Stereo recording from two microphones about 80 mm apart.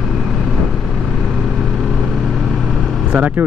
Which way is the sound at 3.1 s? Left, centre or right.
Right.